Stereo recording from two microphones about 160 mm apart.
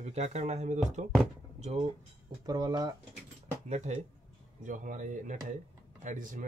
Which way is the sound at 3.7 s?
45° right (ahead or behind).